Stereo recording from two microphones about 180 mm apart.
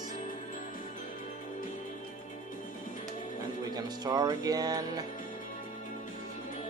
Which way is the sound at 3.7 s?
20° right (ahead or behind).